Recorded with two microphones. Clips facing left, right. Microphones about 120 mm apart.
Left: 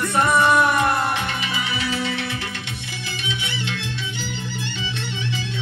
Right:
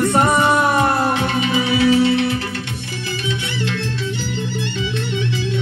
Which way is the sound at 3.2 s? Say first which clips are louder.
Right 5 dB; 40° right (ahead or behind).